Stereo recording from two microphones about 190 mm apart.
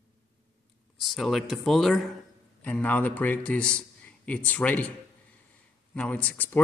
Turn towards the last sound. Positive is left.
turn(degrees=10)  # may be behind; listen again after turning